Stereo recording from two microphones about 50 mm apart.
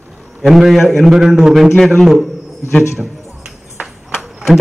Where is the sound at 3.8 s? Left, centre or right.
Right.